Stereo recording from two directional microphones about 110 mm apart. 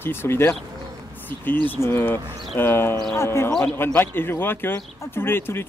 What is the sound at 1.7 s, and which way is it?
A man's voice, 20° left (ahead or behind).